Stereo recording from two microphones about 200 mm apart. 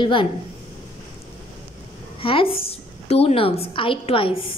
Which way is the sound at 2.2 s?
25° left (ahead or behind).